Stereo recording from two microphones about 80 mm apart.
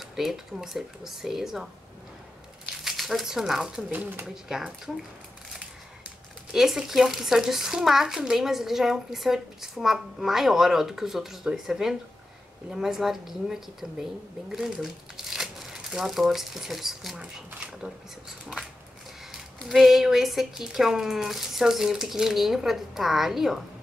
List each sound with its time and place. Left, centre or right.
0.0 s speech: centre
3.9 s speech: right
4.5 s speech: centre
6.5 s speech: centre
17.5 s speech: centre
19.7 s speech: centre